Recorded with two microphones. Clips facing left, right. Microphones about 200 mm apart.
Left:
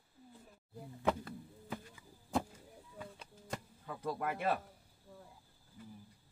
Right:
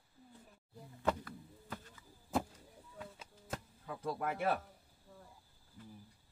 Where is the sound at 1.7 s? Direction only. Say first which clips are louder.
Left 4 dB; 10° left (ahead or behind).